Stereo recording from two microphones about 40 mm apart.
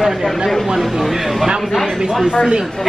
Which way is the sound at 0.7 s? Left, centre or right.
Centre.